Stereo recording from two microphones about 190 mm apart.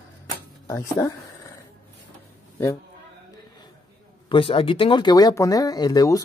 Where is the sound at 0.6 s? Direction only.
15° left (ahead or behind).